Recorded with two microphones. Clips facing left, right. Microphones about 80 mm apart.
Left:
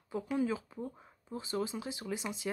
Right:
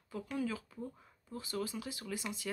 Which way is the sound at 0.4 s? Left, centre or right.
Left.